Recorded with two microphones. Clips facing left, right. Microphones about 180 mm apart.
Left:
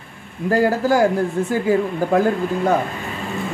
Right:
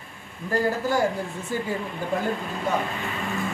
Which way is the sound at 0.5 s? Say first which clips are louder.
Left 7 dB; 90° left.